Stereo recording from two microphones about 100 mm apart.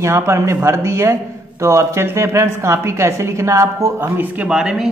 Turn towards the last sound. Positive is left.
turn(degrees=-5)  # may be behind; listen again after turning